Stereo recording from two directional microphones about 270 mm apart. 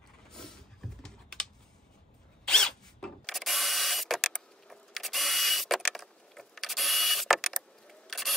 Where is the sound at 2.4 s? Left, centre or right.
Centre.